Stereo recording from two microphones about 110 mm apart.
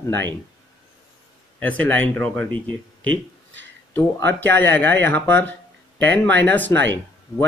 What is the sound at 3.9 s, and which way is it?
Speech, 20° left (ahead or behind).